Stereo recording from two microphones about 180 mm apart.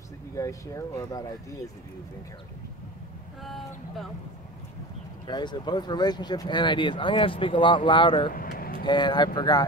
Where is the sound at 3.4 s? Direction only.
Centre (ahead or behind).